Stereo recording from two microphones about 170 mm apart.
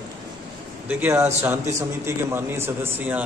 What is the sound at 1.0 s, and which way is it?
A man's voice, 15° right (ahead or behind).